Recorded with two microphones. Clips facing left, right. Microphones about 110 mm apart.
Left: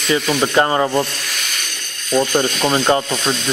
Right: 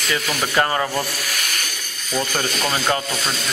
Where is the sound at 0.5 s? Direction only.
20° left (ahead or behind).